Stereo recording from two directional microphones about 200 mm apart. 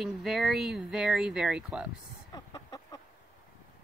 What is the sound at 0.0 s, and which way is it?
Speech, centre (ahead or behind).